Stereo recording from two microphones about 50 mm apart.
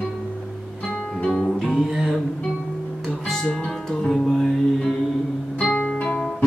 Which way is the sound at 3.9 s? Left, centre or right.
Centre.